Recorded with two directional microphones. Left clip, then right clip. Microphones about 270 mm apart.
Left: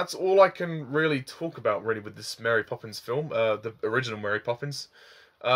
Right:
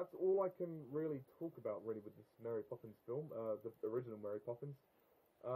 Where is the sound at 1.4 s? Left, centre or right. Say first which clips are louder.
Left 15 dB; left.